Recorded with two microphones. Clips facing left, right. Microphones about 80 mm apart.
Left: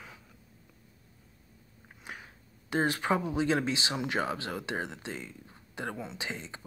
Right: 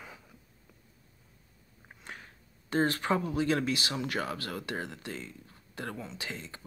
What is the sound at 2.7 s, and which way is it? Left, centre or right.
Speech, centre.